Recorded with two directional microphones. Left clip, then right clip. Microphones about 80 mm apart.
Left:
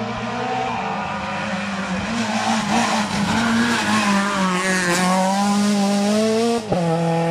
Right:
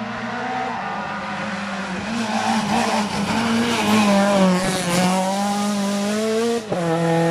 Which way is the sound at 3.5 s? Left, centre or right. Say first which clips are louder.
Right 2 dB; right.